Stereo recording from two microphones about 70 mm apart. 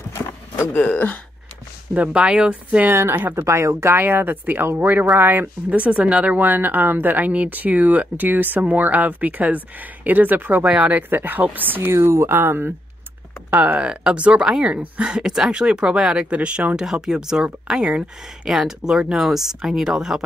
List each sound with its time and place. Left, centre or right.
0.7 s speech: left
2.0 s speech: centre
2.8 s speech: right
3.4 s speech: right
3.9 s speech: right
11.9 s speech: right; by 20.2 s centre